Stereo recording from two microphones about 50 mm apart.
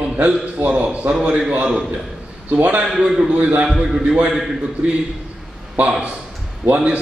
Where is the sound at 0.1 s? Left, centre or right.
Right.